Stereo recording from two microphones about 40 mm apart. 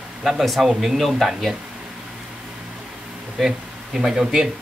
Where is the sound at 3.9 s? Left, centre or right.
Centre.